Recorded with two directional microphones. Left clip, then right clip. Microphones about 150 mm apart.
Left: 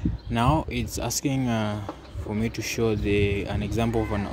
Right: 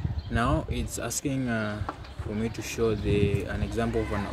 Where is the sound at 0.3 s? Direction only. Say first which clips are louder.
Left 4 dB; 40° left (ahead or behind).